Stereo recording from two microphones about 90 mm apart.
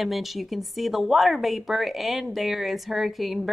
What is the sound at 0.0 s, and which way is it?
Speech, centre (ahead or behind).